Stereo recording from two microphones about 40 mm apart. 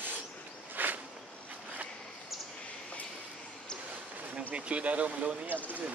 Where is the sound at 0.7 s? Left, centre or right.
Right.